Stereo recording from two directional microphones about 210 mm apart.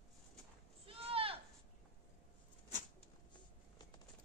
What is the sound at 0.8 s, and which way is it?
Sheep, 25° right (ahead or behind).